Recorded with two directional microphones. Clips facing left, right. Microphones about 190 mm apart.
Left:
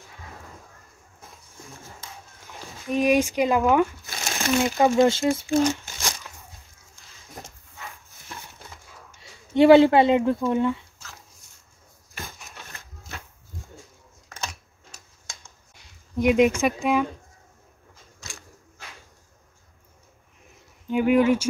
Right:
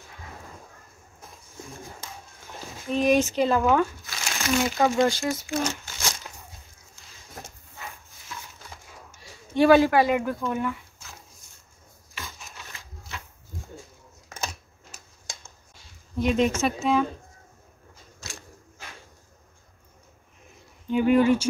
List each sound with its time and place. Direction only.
2.9 s speech: 10° left (ahead or behind)
5.6 s crumpling: 15° left (ahead or behind)
9.2 s speech: 20° left (ahead or behind)
16.2 s speech: 15° left (ahead or behind)
20.8 s speech: 10° left (ahead or behind)